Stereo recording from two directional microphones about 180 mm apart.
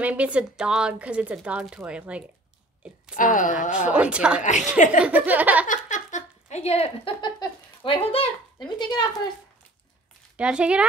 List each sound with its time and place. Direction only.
0.0 s speech: 10° right (ahead or behind)
3.2 s a woman's voice: 45° left (ahead or behind)
3.7 s speech: 5° right (ahead or behind)
4.4 s a woman's voice: 45° left (ahead or behind)
5.0 s speech: 10° right (ahead or behind)
5.7 s a sound: 45° left (ahead or behind); by 9.1 s 25° left (ahead or behind)
10.3 s a woman's voice: 5° right (ahead or behind)